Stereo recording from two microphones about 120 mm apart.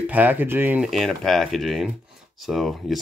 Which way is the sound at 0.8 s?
Centre (ahead or behind).